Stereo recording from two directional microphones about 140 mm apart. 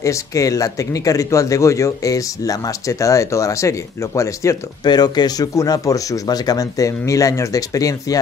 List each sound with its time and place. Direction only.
0.0 s speech: 25° left (ahead or behind)